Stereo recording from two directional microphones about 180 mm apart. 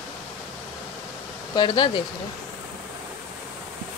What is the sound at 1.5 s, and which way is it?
Speech, 25° left (ahead or behind).